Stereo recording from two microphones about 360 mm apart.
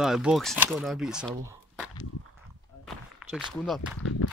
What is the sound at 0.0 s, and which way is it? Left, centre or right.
Speech, centre.